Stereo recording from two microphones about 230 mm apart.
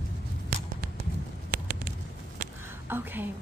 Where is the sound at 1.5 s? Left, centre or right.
Right.